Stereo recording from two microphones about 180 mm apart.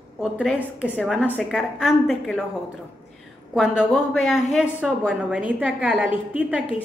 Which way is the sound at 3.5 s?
5° right (ahead or behind).